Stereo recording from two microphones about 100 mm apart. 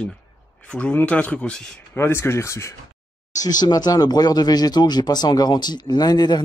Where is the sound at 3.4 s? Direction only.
40° left (ahead or behind).